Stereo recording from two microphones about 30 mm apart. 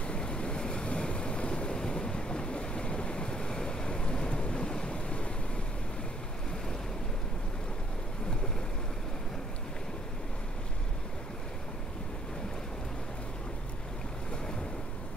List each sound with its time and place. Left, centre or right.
0.0 s waves: left